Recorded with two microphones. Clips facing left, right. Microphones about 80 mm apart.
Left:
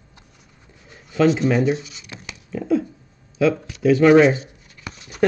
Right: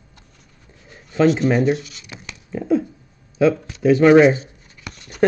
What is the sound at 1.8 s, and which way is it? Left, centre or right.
Speech, centre.